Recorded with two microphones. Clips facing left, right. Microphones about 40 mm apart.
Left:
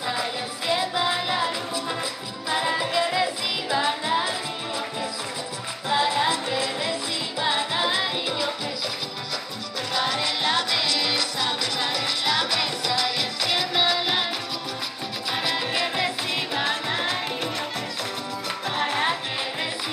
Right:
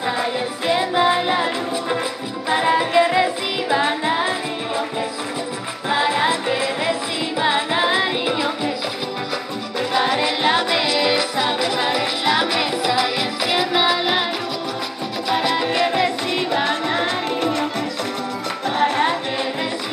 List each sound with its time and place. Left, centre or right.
0.7 s music: right
5.9 s music: right
9.9 s music: right
15.2 s music: centre
18.7 s music: centre